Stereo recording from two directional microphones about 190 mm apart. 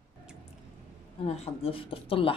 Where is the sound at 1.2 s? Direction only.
30° left (ahead or behind).